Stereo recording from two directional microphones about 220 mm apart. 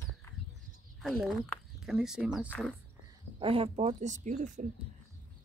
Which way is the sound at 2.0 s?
5° right (ahead or behind).